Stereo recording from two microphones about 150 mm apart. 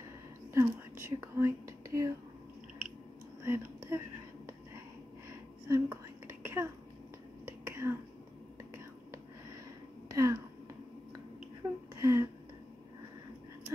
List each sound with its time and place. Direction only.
0.5 s whispering: 15° right (ahead or behind)
3.4 s speech: 15° right (ahead or behind)
5.7 s whispering: 20° right (ahead or behind)
7.4 s finger snapping: 15° right (ahead or behind)
10.0 s a sound: 20° right (ahead or behind)
11.9 s a sound: 20° right (ahead or behind)